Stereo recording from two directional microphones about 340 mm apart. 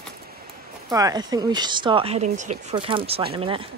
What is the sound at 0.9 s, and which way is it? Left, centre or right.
Speech, centre.